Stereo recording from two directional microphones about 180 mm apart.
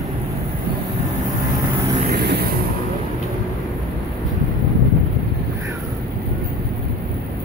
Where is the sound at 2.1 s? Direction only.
60° right (ahead or behind).